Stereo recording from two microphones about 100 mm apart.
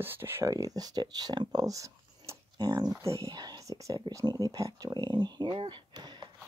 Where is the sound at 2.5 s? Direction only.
45° right (ahead or behind).